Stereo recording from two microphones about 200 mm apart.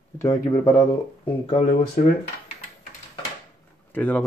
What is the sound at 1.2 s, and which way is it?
Speech, 30° left (ahead or behind).